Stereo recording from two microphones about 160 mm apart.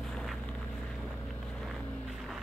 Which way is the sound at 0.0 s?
Centre (ahead or behind).